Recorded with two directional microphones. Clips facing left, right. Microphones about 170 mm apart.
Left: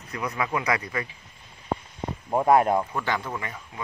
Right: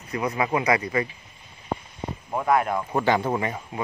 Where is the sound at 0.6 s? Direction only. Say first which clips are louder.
Right 6 dB; 10° right (ahead or behind).